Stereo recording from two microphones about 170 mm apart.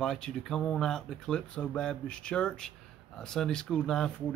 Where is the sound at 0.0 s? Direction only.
5° left (ahead or behind).